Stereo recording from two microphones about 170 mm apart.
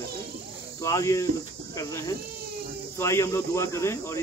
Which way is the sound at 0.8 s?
20° left (ahead or behind).